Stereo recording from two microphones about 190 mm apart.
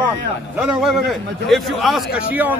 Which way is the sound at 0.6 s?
Centre (ahead or behind).